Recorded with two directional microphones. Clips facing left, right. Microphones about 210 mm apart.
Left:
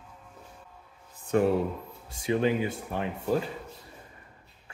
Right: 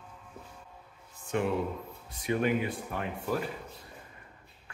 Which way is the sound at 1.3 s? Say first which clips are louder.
Left 6 dB; 40° left (ahead or behind).